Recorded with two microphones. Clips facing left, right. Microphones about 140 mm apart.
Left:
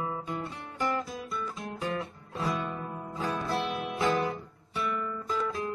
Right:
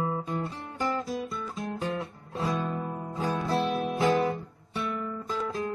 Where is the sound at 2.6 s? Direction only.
35° right (ahead or behind).